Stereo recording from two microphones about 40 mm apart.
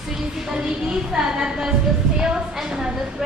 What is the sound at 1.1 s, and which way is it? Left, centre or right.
A woman's voice, centre.